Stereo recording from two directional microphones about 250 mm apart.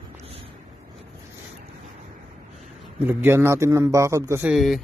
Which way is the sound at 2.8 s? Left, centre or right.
Centre.